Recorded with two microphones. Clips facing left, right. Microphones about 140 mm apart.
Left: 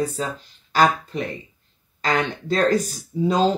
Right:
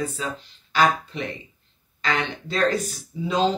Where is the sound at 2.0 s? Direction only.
40° left (ahead or behind).